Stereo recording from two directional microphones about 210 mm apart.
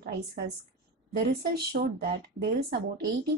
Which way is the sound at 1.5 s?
50° right (ahead or behind).